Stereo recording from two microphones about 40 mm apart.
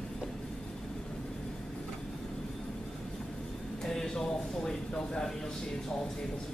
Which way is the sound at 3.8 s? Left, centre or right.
Centre.